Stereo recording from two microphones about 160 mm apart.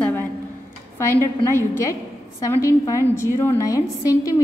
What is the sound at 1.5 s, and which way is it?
A woman's voice, 15° left (ahead or behind).